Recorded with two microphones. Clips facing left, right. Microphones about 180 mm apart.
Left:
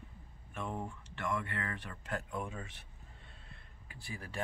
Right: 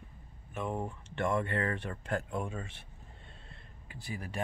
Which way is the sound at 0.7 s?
25° right (ahead or behind).